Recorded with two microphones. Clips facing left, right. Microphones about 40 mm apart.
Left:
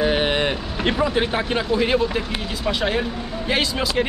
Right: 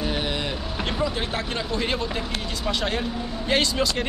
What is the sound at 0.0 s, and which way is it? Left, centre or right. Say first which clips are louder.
Vehicle: left 7 dB; left.